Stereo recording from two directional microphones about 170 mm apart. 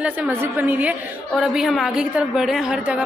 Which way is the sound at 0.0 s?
10° right (ahead or behind).